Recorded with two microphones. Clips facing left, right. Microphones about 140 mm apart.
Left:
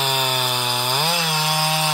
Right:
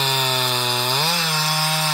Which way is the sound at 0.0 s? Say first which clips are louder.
Even; 10° left (ahead or behind).